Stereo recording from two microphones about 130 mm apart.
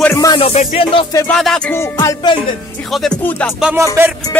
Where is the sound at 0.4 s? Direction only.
50° left (ahead or behind).